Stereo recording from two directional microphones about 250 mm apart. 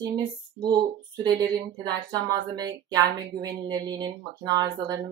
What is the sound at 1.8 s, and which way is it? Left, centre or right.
Speech, centre.